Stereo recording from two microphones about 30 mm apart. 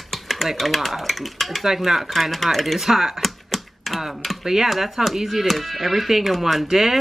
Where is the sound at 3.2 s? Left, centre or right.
Centre.